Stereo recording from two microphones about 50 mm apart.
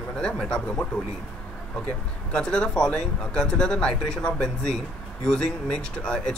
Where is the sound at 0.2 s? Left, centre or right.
Centre.